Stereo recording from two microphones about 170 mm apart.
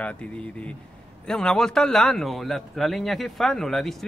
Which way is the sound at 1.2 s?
5° left (ahead or behind).